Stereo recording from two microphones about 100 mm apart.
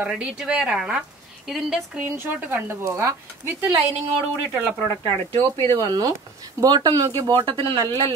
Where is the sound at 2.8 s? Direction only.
30° right (ahead or behind).